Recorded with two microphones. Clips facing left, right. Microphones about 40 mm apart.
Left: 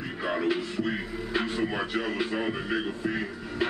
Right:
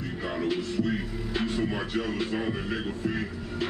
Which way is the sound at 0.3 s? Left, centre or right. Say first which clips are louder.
Left 2 dB; centre.